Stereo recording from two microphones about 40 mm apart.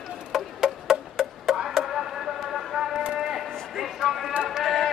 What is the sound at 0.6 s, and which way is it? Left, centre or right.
Music, centre.